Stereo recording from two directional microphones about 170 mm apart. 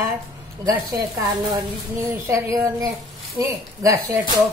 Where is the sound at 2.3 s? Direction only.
20° right (ahead or behind).